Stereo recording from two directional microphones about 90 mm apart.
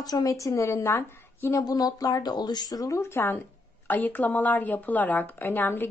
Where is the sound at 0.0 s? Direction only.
40° left (ahead or behind).